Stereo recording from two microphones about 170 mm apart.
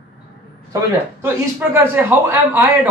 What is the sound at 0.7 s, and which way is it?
A man's voice, 15° right (ahead or behind).